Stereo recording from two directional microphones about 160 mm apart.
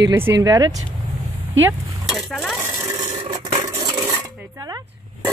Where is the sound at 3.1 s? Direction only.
35° right (ahead or behind).